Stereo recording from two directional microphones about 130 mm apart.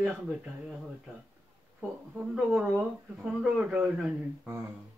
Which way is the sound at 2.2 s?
10° right (ahead or behind).